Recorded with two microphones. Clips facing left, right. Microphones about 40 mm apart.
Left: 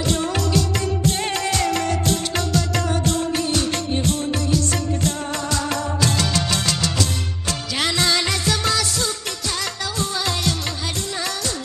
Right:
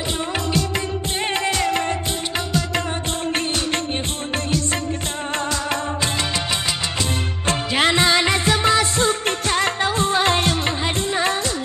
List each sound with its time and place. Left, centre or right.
1.0 s music: right
5.7 s music: right